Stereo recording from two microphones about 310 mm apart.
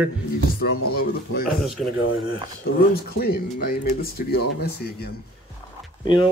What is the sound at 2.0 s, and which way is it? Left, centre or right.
Speech, left.